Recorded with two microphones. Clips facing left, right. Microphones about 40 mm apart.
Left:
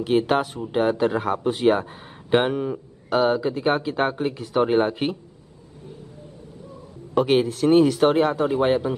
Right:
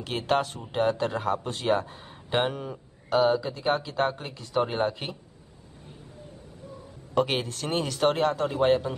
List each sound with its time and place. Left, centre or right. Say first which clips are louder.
0.0 s speech: left 6 dB; centre
7.2 s speech: left 7 dB; centre